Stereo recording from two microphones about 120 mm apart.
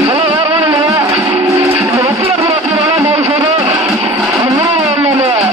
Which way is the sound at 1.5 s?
25° right (ahead or behind).